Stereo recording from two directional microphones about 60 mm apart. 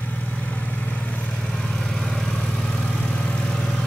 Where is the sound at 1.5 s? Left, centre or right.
Centre.